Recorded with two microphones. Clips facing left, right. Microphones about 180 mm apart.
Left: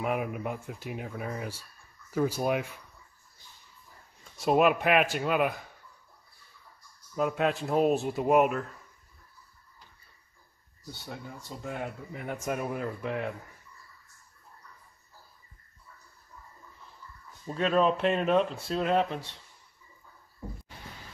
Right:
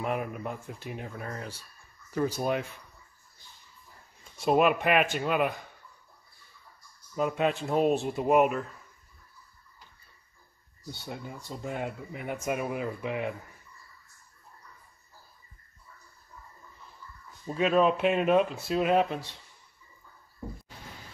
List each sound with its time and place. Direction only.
0.0 s speech: 5° left (ahead or behind)
4.4 s speech: centre (ahead or behind)
7.2 s speech: centre (ahead or behind)
11.1 s speech: 15° right (ahead or behind)
12.1 s speech: 5° right (ahead or behind)
17.5 s speech: 5° right (ahead or behind)